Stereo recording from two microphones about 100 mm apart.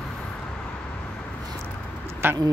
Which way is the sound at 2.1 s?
25° right (ahead or behind).